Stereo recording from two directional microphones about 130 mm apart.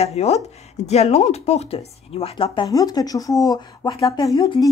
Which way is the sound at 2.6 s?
30° left (ahead or behind).